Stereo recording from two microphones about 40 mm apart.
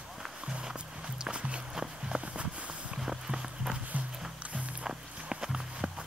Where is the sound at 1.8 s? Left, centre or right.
Centre.